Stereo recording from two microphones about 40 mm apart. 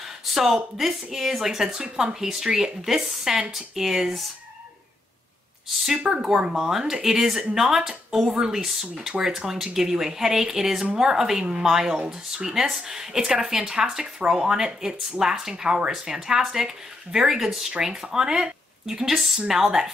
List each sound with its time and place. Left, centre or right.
0.0 s a sound: centre
0.7 s speech: centre
6.2 s speech: right
6.5 s speech: centre